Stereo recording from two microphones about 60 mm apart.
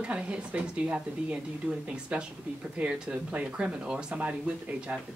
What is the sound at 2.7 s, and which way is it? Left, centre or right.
Speech, right.